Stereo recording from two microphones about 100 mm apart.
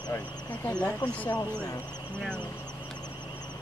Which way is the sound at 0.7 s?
15° left (ahead or behind).